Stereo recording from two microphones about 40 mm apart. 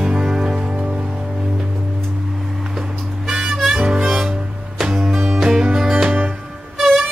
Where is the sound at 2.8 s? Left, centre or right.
Centre.